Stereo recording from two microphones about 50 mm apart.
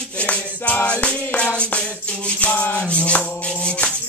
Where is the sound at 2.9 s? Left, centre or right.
Left.